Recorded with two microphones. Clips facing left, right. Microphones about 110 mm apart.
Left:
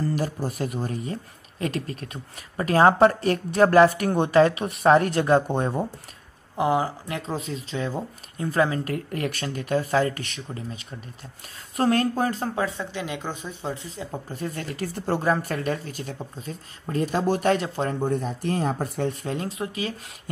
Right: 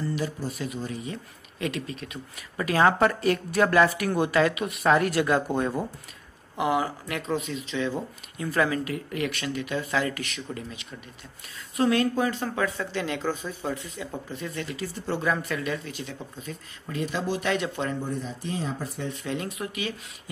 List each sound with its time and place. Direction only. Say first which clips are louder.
0.0 s speech: left 3 dB; 45° left (ahead or behind)
5.5 s speech: left 1 dB; 25° left (ahead or behind)
8.8 s speech: left 2 dB; 45° left (ahead or behind)
12.6 s speech: right 1 dB; 20° left (ahead or behind)
14.3 s speech: left 3 dB; 45° left (ahead or behind)
18.0 s speech: left 7 dB; 55° left (ahead or behind); by 19.9 s 30° left (ahead or behind)